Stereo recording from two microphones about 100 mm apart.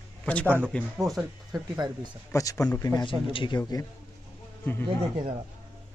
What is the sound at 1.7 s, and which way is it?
Speech, 45° right (ahead or behind).